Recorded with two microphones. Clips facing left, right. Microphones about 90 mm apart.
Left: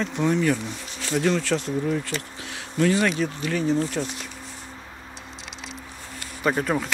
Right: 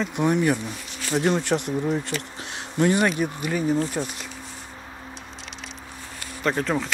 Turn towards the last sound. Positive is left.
turn(degrees=10)  # may be behind; listen again after turning